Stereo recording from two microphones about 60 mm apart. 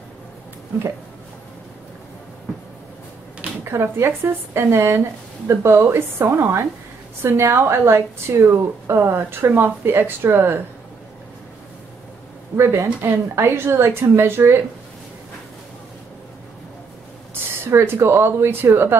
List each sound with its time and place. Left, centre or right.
3.9 s a woman's voice: right
12.5 s a woman's voice: right
17.3 s speech: right